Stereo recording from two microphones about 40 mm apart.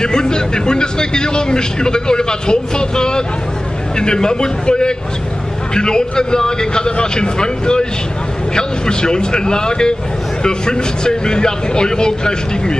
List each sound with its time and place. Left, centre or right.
0.0 s speech: centre